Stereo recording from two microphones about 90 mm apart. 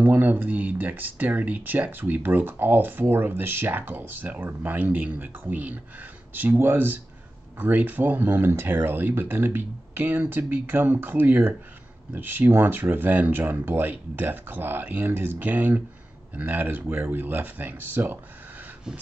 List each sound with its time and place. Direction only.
0.0 s speech: 20° right (ahead or behind)